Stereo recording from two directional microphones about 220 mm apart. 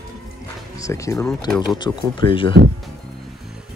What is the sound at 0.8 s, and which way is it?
Speech, 15° left (ahead or behind).